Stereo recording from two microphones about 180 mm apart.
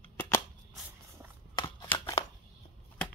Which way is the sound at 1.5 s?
25° left (ahead or behind).